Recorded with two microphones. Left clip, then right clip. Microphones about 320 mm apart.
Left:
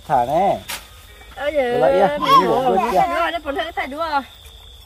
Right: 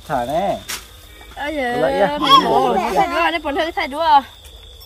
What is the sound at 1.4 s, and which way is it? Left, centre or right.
Speech, centre.